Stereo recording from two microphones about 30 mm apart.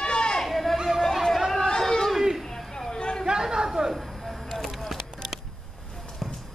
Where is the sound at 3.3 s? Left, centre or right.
Right.